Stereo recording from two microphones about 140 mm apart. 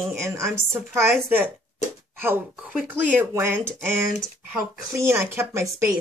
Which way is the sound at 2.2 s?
15° right (ahead or behind).